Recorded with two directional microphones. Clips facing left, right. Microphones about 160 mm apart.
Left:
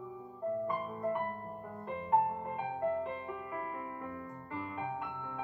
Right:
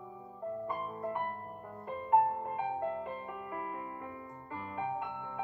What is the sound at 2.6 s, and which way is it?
Music, 20° right (ahead or behind).